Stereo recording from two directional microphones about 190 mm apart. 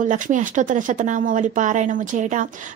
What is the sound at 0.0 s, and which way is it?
Speech, 40° right (ahead or behind).